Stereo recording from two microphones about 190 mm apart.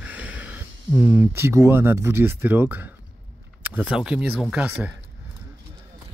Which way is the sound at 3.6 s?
5° right (ahead or behind).